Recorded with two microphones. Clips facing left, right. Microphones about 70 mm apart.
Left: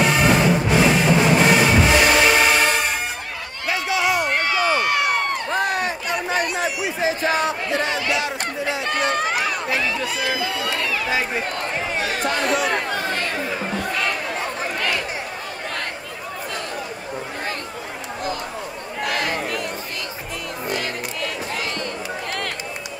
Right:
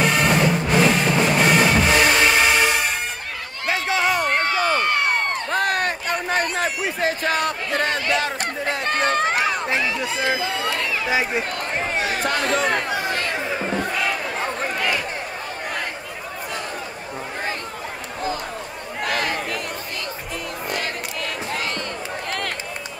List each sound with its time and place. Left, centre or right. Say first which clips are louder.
0.0 s music: left 1 dB; centre
3.6 s run: even; right; by 11.4 s centre
12.4 s chatter: even; right
12.9 s chatter: even; centre
19.0 s a sound: even; right
20.7 s music: left 1 dB; right